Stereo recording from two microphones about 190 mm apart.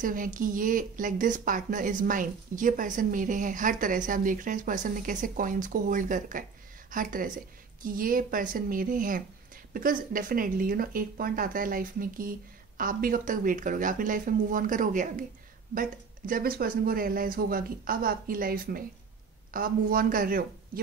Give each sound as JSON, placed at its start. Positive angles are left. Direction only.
{"t": 0.0, "sound": "speech", "side_deg": -45}